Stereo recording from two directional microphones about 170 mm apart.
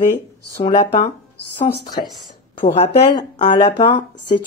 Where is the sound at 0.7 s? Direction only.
40° left (ahead or behind).